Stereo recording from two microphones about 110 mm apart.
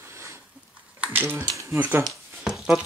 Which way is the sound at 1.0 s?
15° right (ahead or behind).